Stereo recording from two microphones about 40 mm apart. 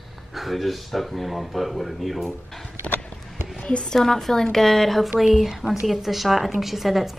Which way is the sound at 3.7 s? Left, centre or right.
Left.